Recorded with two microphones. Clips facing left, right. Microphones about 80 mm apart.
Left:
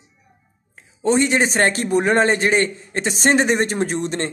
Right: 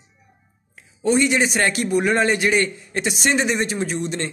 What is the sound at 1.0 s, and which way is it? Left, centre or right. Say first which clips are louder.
A man's voice: left 1 dB; left.